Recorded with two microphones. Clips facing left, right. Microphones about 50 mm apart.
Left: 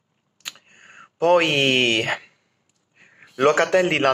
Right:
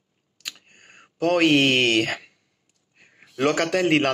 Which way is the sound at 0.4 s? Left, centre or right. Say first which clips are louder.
Left 1 dB; left.